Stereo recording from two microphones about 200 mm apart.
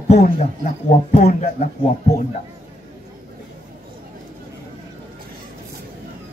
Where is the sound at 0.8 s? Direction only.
35° left (ahead or behind).